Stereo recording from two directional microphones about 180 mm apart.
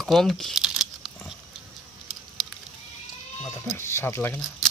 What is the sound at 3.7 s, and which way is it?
Speech, 15° left (ahead or behind).